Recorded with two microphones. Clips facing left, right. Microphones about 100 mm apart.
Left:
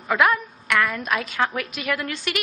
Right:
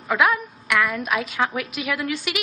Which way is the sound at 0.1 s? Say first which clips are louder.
Even; centre (ahead or behind).